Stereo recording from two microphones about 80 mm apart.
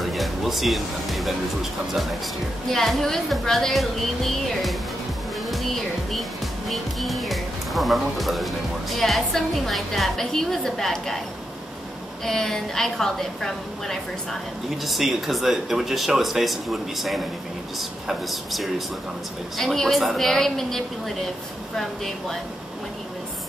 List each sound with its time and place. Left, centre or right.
0.0 s speech: centre
5.5 s music: centre
6.7 s speech: centre
12.3 s speech: centre